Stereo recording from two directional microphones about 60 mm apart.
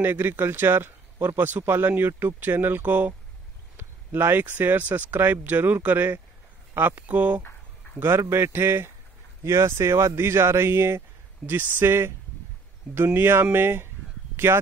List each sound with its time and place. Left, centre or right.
0.0 s speech: right
7.0 s speech: right
8.0 s speech: right
11.4 s speech: right
14.3 s a sound: right